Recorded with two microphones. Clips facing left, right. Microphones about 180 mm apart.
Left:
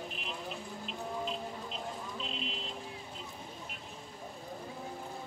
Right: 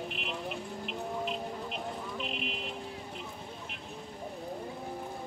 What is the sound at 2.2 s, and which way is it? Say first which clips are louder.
Vehicle: right 3 dB; 65° right (ahead or behind).